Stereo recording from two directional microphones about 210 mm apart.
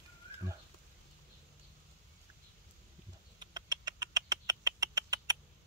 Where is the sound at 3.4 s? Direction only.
20° right (ahead or behind).